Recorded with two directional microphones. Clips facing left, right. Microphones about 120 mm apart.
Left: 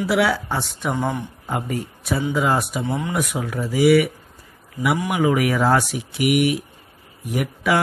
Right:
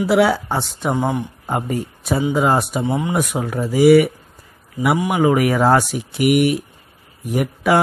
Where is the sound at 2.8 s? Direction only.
20° right (ahead or behind).